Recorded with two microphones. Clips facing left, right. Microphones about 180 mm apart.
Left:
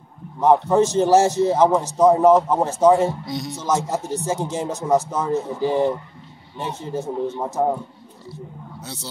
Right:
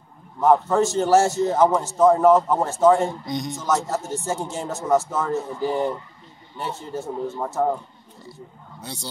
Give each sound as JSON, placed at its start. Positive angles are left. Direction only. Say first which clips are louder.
{"t": 0.4, "sound": "a man's voice", "louder": "left 2 dB", "side_deg": 20}
{"t": 3.3, "sound": "speech", "louder": "even", "side_deg": 0}
{"t": 3.6, "sound": "a man's voice", "louder": "left 2 dB", "side_deg": 15}